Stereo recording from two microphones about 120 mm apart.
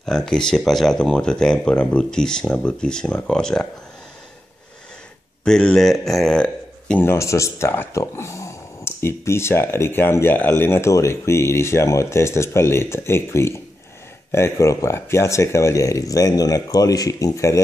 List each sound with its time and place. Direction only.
0.0 s speech: 5° left (ahead or behind)
5.4 s a man's voice: 5° left (ahead or behind)
7.1 s speech: 25° left (ahead or behind)